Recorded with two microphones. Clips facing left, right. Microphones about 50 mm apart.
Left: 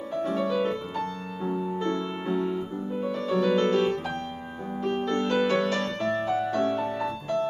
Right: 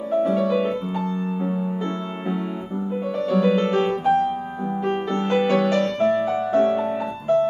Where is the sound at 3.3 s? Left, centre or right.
Centre.